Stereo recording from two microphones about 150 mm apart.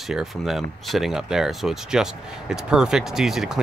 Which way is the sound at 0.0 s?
Centre (ahead or behind).